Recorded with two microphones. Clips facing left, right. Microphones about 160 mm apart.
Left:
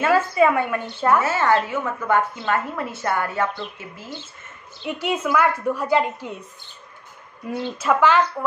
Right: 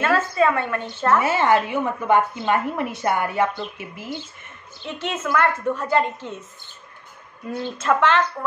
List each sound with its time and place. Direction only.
0.0 s a woman's voice: 15° left (ahead or behind)
1.2 s a woman's voice: 15° right (ahead or behind)
5.0 s a woman's voice: 10° left (ahead or behind)
7.4 s a woman's voice: 10° left (ahead or behind)